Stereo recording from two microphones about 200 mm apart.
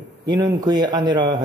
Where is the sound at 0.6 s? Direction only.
20° right (ahead or behind).